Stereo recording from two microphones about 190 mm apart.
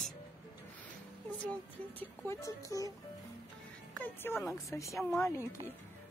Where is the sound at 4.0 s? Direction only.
10° left (ahead or behind).